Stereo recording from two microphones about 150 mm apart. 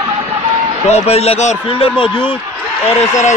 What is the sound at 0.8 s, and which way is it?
Speech, 45° left (ahead or behind).